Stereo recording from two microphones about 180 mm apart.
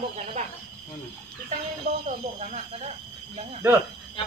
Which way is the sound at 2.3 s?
35° right (ahead or behind).